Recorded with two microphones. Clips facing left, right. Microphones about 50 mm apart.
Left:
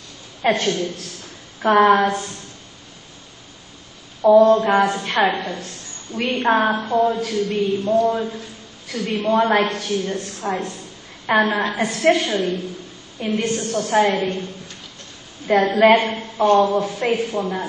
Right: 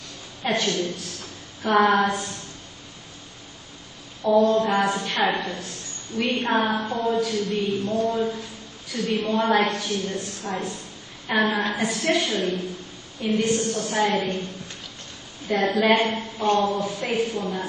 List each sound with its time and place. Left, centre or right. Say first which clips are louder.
0.5 s a woman's voice: left 4 dB; left
4.3 s a woman's voice: left 6 dB; left
15.5 s a woman's voice: left 6 dB; left